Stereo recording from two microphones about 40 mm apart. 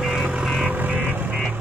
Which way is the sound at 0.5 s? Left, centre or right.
Right.